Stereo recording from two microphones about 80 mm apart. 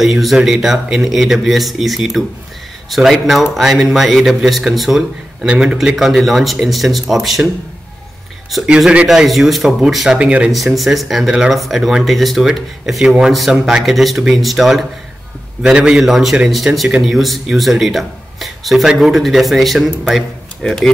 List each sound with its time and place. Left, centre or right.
0.0 s speech: centre
8.6 s speech: centre
10.1 s a man's voice: centre
10.5 s a man's voice: centre